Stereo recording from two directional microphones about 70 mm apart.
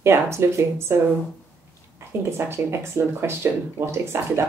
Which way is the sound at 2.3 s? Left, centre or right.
Right.